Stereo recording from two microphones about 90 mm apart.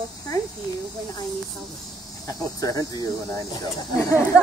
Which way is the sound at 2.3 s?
40° left (ahead or behind).